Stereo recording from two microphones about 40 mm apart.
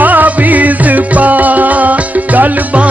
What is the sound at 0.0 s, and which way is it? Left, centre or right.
Music, right.